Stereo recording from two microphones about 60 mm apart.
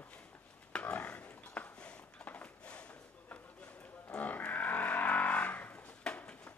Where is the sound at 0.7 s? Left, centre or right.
Left.